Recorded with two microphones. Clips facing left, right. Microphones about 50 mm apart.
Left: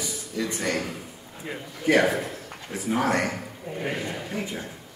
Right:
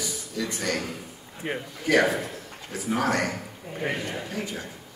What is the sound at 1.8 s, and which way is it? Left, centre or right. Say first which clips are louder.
A man's voice: left 1 dB; left.